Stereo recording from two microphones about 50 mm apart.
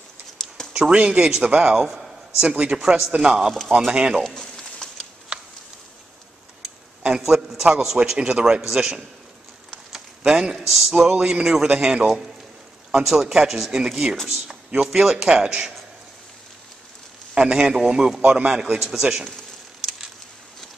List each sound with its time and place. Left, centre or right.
0.7 s a man's voice: centre
2.8 s a man's voice: centre
3.1 s speech: centre
4.2 s a sound: centre
7.2 s a man's voice: centre
9.9 s a sound: centre
10.7 s a man's voice: centre
17.3 s a man's voice: centre
19.8 s a sound: centre